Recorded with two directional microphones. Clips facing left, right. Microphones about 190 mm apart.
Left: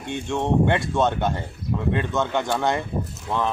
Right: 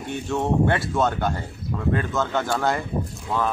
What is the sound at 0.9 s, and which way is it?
Speech, centre (ahead or behind).